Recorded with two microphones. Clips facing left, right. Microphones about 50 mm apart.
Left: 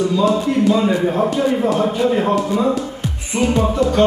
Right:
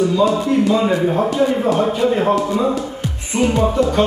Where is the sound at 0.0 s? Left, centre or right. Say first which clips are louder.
Right 1 dB; centre.